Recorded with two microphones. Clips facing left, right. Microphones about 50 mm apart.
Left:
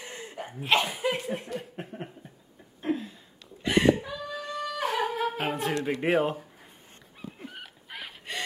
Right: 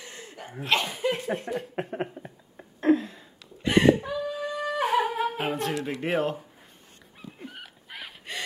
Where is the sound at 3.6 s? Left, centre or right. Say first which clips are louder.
Right 3 dB; centre.